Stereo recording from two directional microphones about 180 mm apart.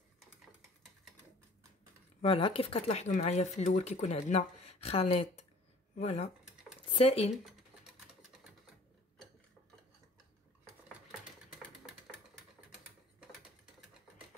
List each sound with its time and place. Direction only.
2.2 s speech: 30° left (ahead or behind)
10.9 s sewing machine: centre (ahead or behind)